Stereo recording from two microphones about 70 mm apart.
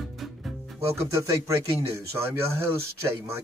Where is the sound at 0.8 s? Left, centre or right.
Right.